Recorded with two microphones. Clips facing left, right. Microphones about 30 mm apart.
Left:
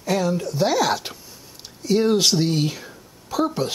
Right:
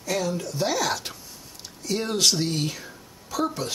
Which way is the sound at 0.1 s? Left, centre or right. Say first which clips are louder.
Left 5 dB; centre.